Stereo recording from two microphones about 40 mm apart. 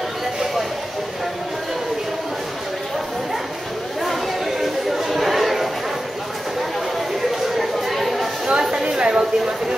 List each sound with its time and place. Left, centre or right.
4.0 s chatter: centre
7.4 s chatter: centre
8.5 s a sound: centre